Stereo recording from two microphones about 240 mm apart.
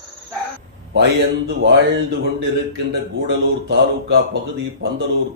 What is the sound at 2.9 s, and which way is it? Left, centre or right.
Speech, right.